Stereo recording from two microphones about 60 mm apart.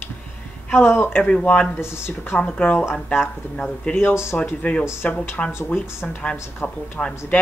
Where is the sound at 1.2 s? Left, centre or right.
Left.